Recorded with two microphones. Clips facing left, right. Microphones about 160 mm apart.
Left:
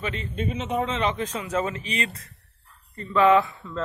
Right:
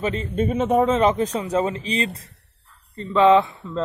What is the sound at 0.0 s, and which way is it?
A man's voice, 40° right (ahead or behind).